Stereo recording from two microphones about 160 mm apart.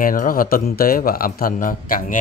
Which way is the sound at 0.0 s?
60° left (ahead or behind).